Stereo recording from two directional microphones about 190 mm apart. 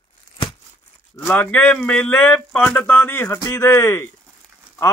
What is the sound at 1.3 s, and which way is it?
Speech, 10° left (ahead or behind).